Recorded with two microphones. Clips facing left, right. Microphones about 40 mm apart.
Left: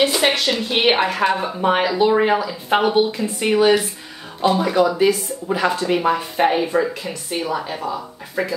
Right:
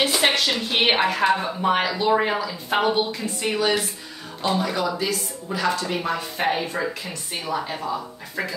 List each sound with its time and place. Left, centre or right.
0.0 s a woman's voice: centre
1.6 s speech: centre
4.5 s speech: centre
4.9 s a woman's voice: left; by 8.5 s centre